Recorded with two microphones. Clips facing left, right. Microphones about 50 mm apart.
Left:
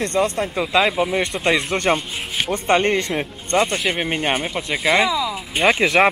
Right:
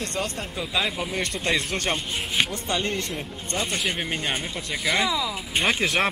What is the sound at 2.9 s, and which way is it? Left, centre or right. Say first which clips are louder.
Speech: left 8 dB; left.